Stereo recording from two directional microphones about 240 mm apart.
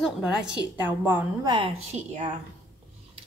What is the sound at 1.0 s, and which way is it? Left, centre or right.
Speech, centre.